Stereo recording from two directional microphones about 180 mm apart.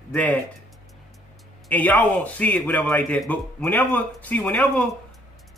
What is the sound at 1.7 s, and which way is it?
A man's voice, 10° left (ahead or behind).